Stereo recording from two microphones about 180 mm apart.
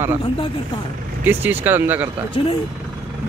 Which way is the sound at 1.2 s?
10° right (ahead or behind).